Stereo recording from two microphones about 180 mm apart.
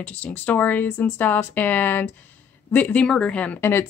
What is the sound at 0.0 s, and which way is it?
A woman's voice, 5° left (ahead or behind).